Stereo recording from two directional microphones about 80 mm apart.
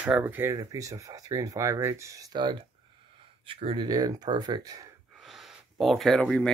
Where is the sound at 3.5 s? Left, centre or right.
Right.